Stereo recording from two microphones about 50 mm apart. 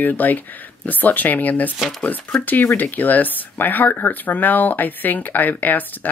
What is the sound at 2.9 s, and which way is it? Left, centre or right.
Speech, left.